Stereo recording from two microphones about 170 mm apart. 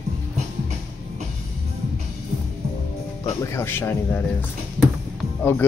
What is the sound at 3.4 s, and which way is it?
Speech, 15° left (ahead or behind).